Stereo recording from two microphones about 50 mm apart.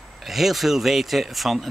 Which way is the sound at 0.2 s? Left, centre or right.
Centre.